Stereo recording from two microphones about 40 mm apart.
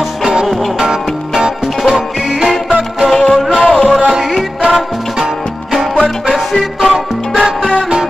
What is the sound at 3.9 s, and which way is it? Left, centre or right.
Music, centre.